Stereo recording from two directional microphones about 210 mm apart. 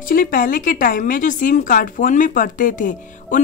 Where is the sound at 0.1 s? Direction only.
40° left (ahead or behind).